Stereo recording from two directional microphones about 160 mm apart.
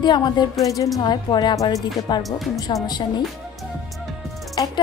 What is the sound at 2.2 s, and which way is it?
Speech, centre (ahead or behind).